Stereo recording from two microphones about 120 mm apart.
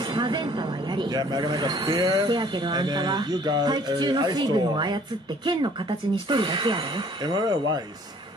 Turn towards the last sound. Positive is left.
turn(degrees=-40)  # may be behind; listen again after turning